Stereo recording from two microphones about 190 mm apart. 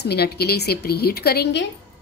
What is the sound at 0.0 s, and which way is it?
Speech, 60° left (ahead or behind).